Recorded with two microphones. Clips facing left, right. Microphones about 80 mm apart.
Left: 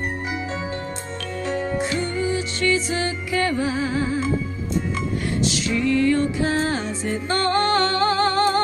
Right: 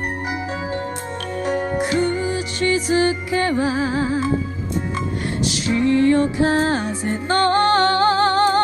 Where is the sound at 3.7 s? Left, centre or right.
Right.